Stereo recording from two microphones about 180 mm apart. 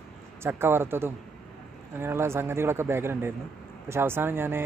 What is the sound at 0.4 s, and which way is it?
Speech, 15° right (ahead or behind).